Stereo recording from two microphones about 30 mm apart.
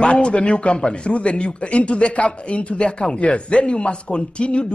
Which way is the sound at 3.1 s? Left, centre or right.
Left.